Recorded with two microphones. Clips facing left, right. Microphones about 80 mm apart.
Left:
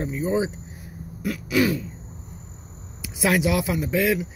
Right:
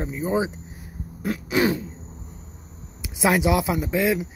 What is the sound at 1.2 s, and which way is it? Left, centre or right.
Throat clearing, right.